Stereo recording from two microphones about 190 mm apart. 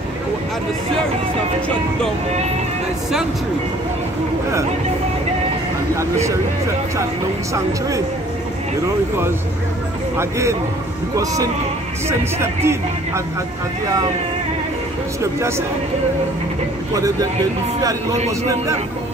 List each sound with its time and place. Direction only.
5.9 s speech: 15° right (ahead or behind)
10.1 s speech: 15° right (ahead or behind)
12.1 s speech: 15° right (ahead or behind)
16.9 s speech: 20° right (ahead or behind)